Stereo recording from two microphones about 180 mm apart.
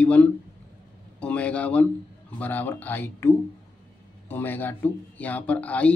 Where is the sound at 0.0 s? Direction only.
10° left (ahead or behind).